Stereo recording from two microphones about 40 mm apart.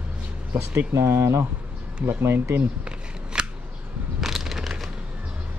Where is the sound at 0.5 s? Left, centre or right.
Right.